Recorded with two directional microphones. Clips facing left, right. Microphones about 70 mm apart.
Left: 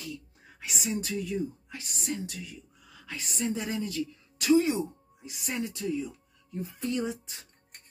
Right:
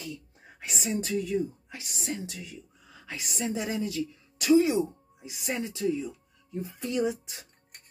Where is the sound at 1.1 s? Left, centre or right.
Centre.